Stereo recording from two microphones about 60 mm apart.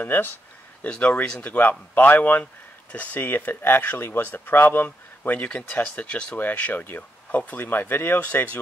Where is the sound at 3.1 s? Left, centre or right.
Left; by 6.4 s centre.